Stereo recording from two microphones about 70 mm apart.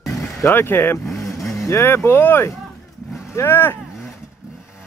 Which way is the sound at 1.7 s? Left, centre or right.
Left.